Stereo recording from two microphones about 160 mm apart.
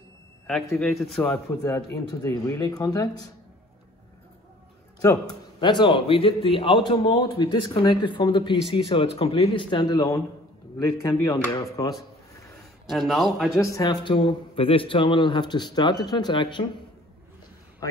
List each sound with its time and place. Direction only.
0.7 s a man's voice: centre (ahead or behind)
1.3 s a man's voice: 20° left (ahead or behind)
5.6 s a man's voice: 30° left (ahead or behind)
12.9 s a man's voice: centre (ahead or behind)
13.5 s a man's voice: 20° left (ahead or behind)